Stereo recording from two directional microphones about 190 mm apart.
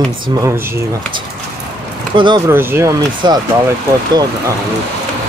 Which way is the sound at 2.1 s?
25° right (ahead or behind).